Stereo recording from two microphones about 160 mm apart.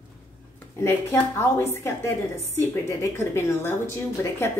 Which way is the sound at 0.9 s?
15° left (ahead or behind).